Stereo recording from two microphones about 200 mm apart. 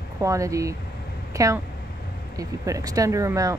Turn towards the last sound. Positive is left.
turn(degrees=-15)  # may be behind; listen again after turning